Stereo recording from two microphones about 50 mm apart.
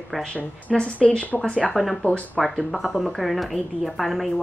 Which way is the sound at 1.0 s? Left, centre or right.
Left.